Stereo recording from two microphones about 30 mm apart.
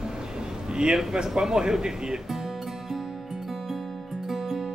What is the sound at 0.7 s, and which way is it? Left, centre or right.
Speech, centre.